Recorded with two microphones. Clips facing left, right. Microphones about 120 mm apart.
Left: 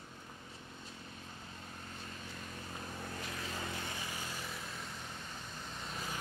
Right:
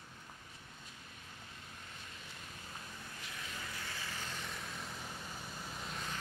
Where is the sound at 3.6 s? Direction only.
25° left (ahead or behind).